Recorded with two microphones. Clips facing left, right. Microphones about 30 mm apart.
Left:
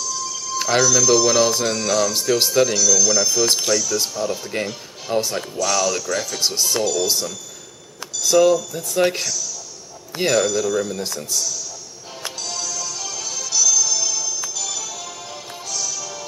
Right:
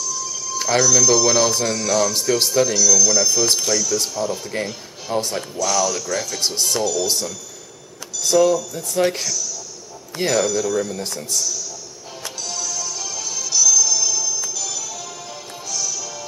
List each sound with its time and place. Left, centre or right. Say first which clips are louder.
0.1 s speech: left 1 dB; centre
12.2 s music: even; centre